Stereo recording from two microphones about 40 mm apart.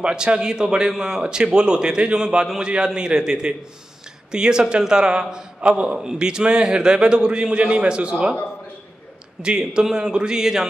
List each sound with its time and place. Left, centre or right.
0.0 s a man's voice: right
5.9 s a man's voice: centre
9.4 s a man's voice: right